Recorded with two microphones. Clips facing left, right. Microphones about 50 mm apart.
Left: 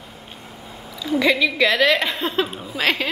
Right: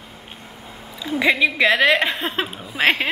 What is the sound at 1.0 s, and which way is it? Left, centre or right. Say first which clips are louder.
A woman's voice: even; right.